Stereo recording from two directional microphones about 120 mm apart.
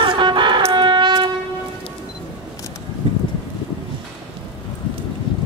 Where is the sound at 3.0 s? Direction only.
45° right (ahead or behind).